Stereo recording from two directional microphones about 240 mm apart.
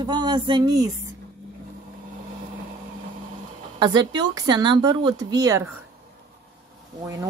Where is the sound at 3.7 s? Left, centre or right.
Centre.